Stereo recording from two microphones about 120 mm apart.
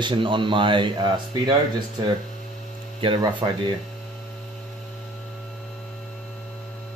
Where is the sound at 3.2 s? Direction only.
40° right (ahead or behind).